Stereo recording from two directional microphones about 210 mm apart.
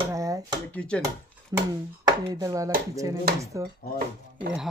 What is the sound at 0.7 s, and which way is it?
Speech, 5° left (ahead or behind).